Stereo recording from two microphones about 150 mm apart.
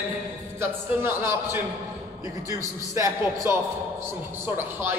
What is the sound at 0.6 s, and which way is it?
A man's voice, 15° right (ahead or behind).